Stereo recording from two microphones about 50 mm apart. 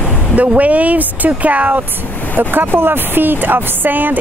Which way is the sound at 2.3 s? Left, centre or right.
Right.